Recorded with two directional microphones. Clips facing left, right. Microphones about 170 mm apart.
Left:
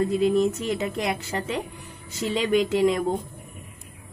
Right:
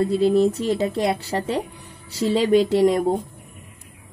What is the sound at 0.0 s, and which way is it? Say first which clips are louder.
A woman's voice: right 3 dB; 35° right (ahead or behind).